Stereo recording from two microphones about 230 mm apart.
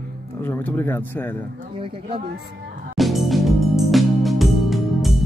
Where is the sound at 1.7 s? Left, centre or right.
Right.